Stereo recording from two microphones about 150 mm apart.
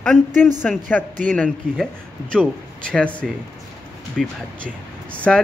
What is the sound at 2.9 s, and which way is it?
Speech, 10° left (ahead or behind).